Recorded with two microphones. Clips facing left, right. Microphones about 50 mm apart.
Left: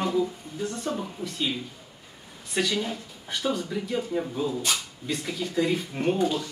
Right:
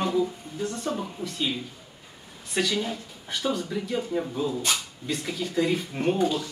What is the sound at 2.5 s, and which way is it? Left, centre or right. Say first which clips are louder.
Speech: even; centre.